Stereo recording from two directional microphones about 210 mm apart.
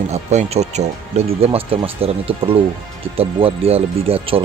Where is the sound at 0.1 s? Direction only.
30° right (ahead or behind).